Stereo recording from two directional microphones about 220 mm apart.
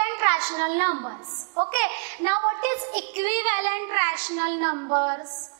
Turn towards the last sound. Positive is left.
turn(degrees=-25)  # may be behind; listen again after turning